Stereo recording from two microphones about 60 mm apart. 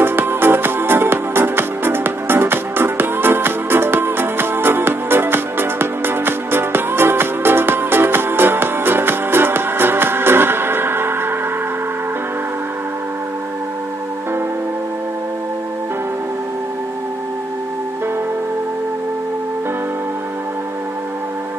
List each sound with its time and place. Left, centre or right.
0.0 s music: right